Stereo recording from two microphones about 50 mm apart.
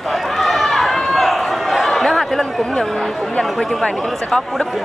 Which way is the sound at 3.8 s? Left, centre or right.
Centre.